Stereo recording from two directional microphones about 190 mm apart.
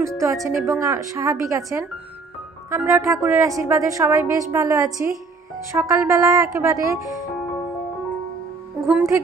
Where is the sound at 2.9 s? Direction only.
15° right (ahead or behind).